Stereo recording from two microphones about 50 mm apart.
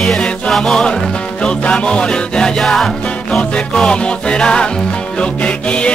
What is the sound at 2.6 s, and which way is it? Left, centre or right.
Music, centre.